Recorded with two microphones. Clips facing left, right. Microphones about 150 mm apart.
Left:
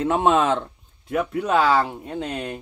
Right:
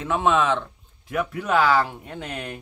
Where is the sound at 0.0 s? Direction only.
40° left (ahead or behind).